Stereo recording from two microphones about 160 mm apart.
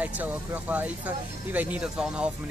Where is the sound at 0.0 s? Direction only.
10° right (ahead or behind).